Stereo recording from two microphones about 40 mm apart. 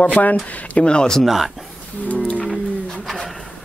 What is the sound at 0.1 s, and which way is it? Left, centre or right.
Speech, left.